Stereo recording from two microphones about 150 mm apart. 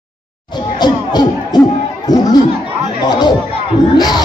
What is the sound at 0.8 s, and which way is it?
Music, 30° left (ahead or behind).